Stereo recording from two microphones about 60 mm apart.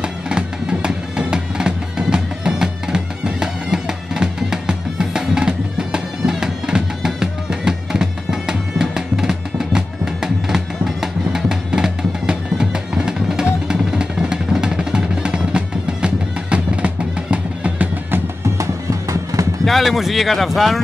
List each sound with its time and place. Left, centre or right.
0.0 s music: centre
18.6 s music: right
19.6 s speech: centre